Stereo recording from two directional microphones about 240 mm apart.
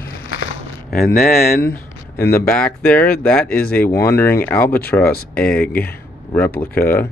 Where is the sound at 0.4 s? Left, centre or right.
Left.